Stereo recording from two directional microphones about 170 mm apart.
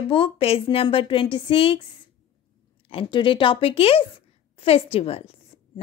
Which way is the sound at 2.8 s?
30° left (ahead or behind).